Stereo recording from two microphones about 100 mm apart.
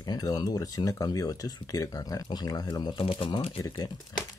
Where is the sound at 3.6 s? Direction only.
40° left (ahead or behind).